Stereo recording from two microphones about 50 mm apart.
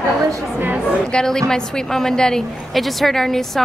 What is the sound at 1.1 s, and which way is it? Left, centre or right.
A woman's voice, centre.